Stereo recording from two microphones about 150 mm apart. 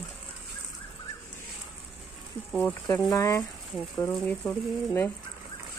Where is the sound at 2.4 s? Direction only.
10° left (ahead or behind).